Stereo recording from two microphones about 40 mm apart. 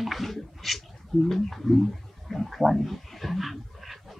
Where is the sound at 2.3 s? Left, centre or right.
Centre.